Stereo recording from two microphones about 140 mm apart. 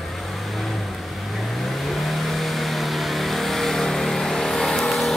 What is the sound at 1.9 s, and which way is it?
Vehicle, centre (ahead or behind).